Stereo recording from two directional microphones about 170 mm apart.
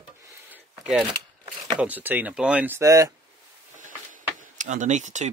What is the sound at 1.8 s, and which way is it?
Speech, 10° right (ahead or behind).